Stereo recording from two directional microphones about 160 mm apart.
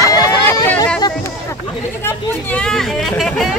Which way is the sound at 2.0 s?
5° left (ahead or behind).